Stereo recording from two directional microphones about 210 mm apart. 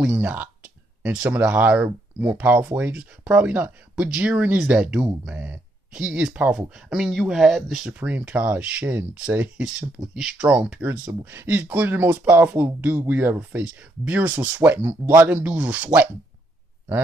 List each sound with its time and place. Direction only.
0.0 s speech: 10° right (ahead or behind)